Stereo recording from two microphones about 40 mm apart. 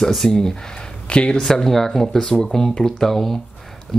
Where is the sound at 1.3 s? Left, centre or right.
Centre.